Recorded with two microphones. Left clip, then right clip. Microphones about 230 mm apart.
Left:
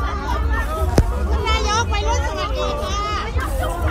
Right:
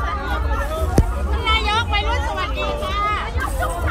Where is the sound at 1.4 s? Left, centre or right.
Centre.